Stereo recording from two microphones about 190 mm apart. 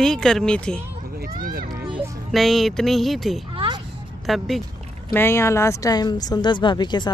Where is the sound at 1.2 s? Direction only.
50° right (ahead or behind).